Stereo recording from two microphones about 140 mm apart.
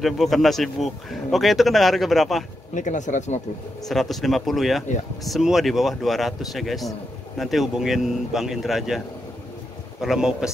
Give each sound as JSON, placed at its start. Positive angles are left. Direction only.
{"t": 0.0, "sound": "speech", "side_deg": 0}
{"t": 2.7, "sound": "speech", "side_deg": 60}
{"t": 3.9, "sound": "speech", "side_deg": 0}